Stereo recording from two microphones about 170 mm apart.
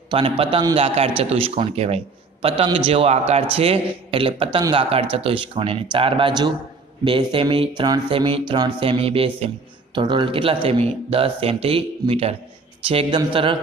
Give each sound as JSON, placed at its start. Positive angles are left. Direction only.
{"t": 0.1, "sound": "a man's voice", "side_deg": -30}